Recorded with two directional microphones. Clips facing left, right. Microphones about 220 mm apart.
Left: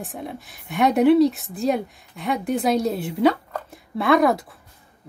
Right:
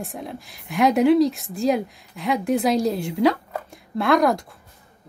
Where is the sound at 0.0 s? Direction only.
Centre (ahead or behind).